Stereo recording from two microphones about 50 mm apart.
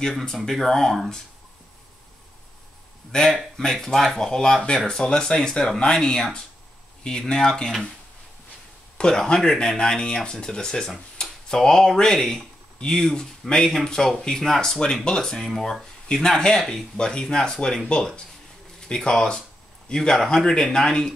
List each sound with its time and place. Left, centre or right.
0.5 s speech: centre
3.1 s speech: centre
8.9 s speech: centre